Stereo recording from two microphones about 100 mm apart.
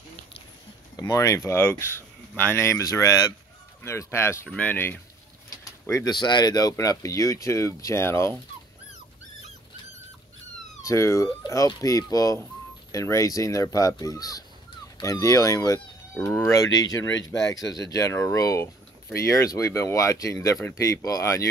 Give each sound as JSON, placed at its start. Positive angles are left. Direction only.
{"t": 0.9, "sound": "speech", "side_deg": 35}
{"t": 1.5, "sound": "speech", "side_deg": 20}
{"t": 4.5, "sound": "speech", "side_deg": 15}
{"t": 5.5, "sound": "bird", "side_deg": 30}
{"t": 6.0, "sound": "speech", "side_deg": 45}
{"t": 10.8, "sound": "speech", "side_deg": 30}